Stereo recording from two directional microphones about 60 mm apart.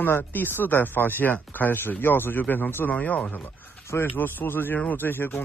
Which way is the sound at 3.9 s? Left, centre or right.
Left.